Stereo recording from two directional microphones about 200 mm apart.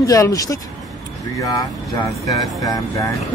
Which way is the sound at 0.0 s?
15° left (ahead or behind).